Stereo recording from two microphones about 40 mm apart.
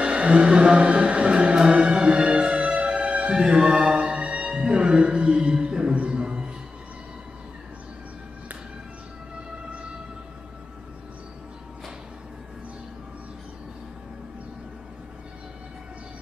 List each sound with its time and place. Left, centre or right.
0.0 s speech: right
3.3 s music: right